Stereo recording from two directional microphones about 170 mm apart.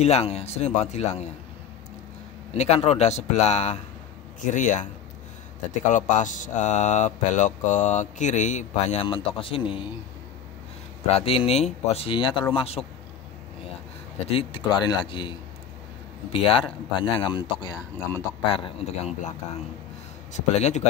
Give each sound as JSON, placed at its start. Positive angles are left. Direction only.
{"t": 0.0, "sound": "speech", "side_deg": 40}
{"t": 2.5, "sound": "speech", "side_deg": 40}
{"t": 5.9, "sound": "speech", "side_deg": 45}
{"t": 9.0, "sound": "speech", "side_deg": 30}
{"t": 11.1, "sound": "speech", "side_deg": 35}
{"t": 14.3, "sound": "speech", "side_deg": 30}
{"t": 20.3, "sound": "speech", "side_deg": 40}